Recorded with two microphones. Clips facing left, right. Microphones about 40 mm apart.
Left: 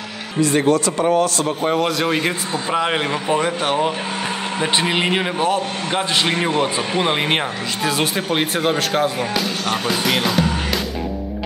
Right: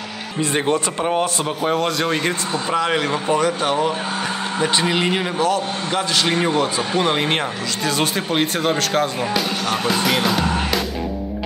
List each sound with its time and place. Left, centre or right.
0.4 s a man's voice: right
1.6 s speech: centre
2.8 s a man's voice: centre